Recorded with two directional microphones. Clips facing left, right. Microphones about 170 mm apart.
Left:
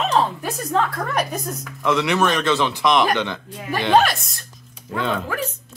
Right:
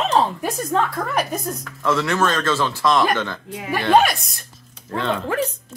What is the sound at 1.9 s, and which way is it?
Speech, 15° left (ahead or behind).